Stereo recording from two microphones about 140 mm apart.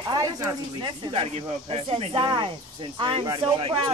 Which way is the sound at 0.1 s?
25° right (ahead or behind).